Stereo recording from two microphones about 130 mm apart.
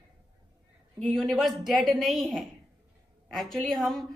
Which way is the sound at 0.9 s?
5° left (ahead or behind).